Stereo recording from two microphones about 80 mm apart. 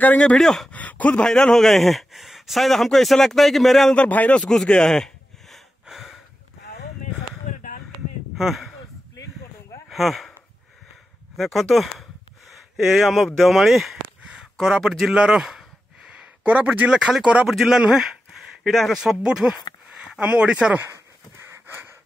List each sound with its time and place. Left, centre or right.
0.0 s speech: centre
0.4 s speech: centre
0.7 s speech: centre
3.9 s a sound: centre
8.4 s speech: centre
9.8 s a sound: centre
11.3 s speech: centre
21.6 s pant: right